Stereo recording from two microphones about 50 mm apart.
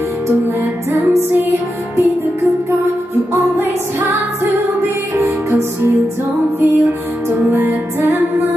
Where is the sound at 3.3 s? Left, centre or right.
Right.